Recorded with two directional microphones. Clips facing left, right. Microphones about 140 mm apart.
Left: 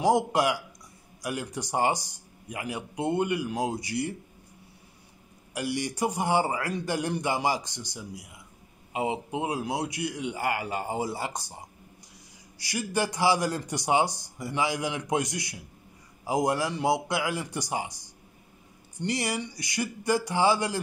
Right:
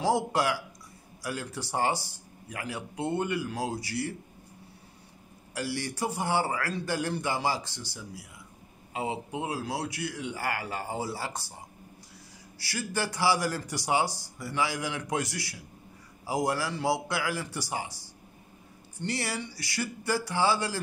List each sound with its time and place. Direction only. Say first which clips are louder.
0.0 s speech: left 3 dB; 15° left (ahead or behind)
5.5 s a man's voice: left 3 dB; 15° left (ahead or behind)
12.5 s a man's voice: left 4 dB; 15° left (ahead or behind)